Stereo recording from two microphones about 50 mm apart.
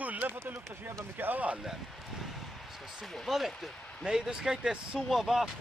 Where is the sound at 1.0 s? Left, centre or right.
Right.